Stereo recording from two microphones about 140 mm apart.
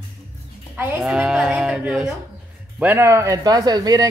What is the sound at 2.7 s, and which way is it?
Speech, 15° right (ahead or behind).